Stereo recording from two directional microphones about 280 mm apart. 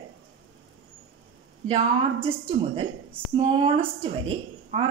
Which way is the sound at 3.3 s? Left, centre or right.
Centre.